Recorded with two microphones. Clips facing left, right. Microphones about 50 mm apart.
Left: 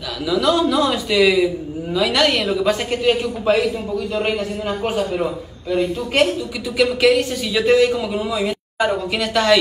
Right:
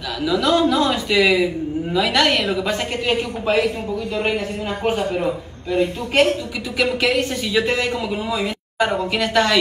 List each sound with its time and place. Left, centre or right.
0.2 s speech: right